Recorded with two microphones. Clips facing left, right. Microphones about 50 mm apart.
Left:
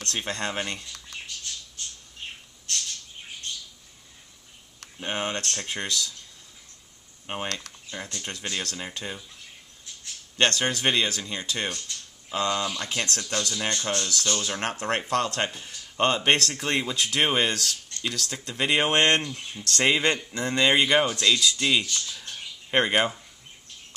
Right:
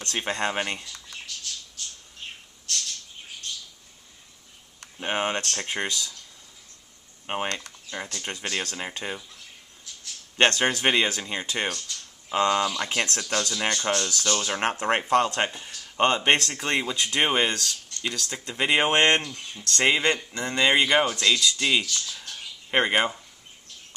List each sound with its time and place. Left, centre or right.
0.0 s speech: centre
5.0 s speech: centre
7.2 s speech: centre
7.9 s speech: right
10.3 s speech: right
19.2 s speech: centre
19.6 s speech: centre